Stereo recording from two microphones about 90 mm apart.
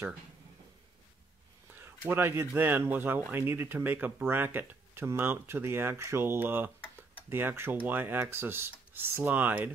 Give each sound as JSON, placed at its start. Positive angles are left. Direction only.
{"t": 1.8, "sound": "speech", "side_deg": -25}